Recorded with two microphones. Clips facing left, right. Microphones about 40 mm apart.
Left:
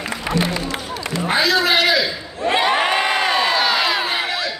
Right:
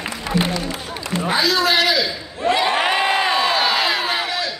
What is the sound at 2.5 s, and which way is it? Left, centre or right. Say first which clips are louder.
Crowd: left 1 dB; left.